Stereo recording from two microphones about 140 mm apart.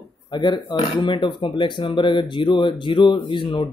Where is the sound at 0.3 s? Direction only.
35° left (ahead or behind).